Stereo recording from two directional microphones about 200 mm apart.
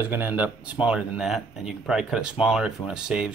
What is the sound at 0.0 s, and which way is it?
Speech, 10° right (ahead or behind).